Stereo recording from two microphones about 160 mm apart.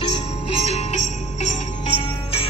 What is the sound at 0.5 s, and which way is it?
Jingle bell, 45° left (ahead or behind).